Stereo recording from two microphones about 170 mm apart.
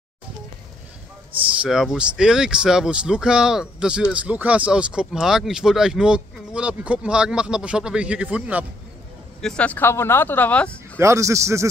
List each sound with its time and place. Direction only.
1.6 s speech: 5° right (ahead or behind)
9.4 s speech: 5° left (ahead or behind)
11.0 s a man's voice: 15° right (ahead or behind)